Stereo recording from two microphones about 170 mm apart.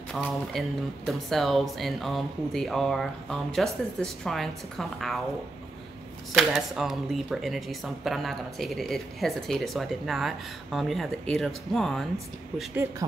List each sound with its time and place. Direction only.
0.1 s speech: centre (ahead or behind)
6.3 s speech: centre (ahead or behind)